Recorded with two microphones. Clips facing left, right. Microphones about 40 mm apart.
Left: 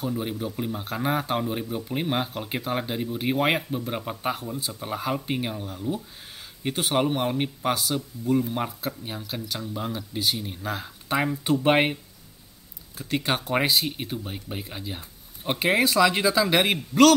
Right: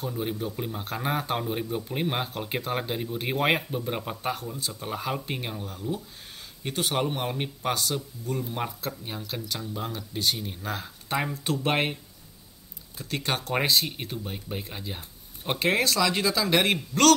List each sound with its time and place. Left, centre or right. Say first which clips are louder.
0.0 s speech: left 2 dB; centre